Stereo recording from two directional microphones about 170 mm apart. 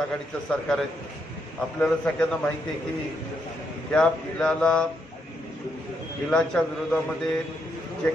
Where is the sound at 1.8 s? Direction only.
5° left (ahead or behind).